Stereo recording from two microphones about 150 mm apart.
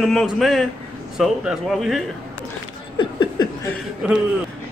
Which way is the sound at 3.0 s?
30° left (ahead or behind).